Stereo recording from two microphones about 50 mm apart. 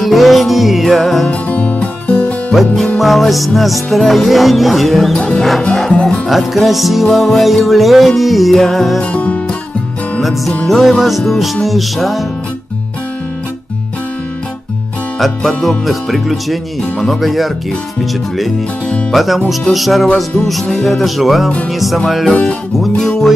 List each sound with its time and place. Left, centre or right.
0.0 s music: centre
1.3 s music: left
2.5 s music: centre
5.1 s music: centre
6.2 s music: centre
9.0 s music: left
10.7 s music: centre
15.1 s music: centre
19.1 s music: centre